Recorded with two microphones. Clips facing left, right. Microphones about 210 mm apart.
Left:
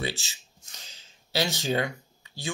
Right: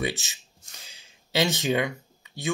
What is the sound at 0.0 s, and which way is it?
Speech, 20° right (ahead or behind).